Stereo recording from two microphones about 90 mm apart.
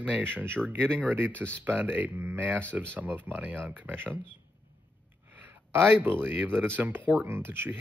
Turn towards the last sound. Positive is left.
turn(degrees=-25)  # may be behind; listen again after turning